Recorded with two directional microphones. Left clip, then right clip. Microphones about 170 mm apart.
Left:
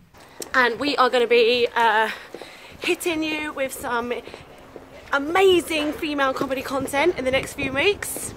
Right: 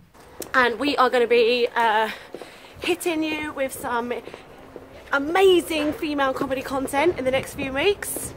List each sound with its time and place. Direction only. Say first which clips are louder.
0.4 s a woman's voice: even; 20° right (ahead or behind)
1.3 s a woman's voice: left 1 dB; centre (ahead or behind)
2.8 s a woman's voice: even; 10° right (ahead or behind)